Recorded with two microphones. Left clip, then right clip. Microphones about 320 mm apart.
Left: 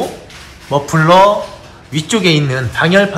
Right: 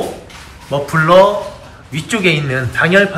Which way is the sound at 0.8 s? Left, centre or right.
Centre.